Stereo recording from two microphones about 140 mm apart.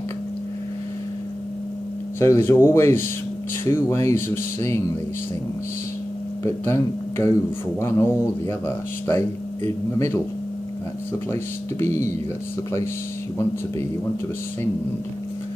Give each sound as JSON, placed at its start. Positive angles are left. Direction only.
{"t": 2.1, "sound": "speech", "side_deg": 20}
{"t": 6.4, "sound": "speech", "side_deg": 20}
{"t": 11.3, "sound": "speech", "side_deg": 20}